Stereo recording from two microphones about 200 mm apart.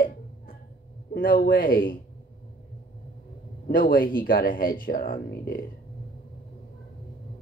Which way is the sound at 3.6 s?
45° left (ahead or behind).